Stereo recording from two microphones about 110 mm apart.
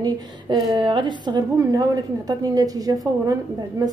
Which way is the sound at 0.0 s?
45° right (ahead or behind).